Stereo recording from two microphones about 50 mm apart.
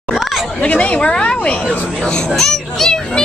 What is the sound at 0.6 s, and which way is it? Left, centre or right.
Speech, left.